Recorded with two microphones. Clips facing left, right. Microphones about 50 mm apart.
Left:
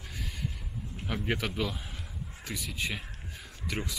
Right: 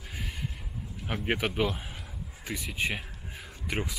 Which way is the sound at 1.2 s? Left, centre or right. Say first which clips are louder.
Right 4 dB; right.